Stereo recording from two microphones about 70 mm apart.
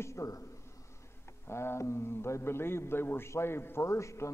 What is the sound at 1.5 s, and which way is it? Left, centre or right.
A man's voice, left.